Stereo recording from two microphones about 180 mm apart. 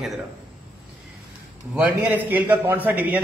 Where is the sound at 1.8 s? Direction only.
10° right (ahead or behind).